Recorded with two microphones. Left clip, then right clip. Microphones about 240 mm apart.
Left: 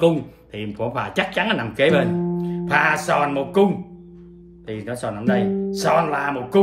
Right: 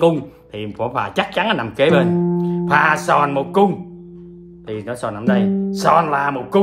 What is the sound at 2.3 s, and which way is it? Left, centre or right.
Music, centre.